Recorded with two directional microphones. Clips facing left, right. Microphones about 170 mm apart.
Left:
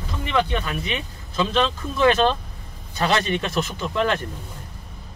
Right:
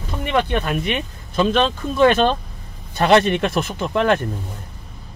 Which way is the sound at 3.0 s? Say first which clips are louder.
Right 7 dB; 60° right (ahead or behind).